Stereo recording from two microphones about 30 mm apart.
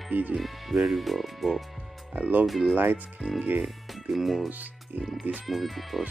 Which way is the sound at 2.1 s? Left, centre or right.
Right.